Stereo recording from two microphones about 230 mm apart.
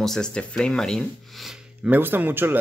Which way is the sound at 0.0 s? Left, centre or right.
Centre.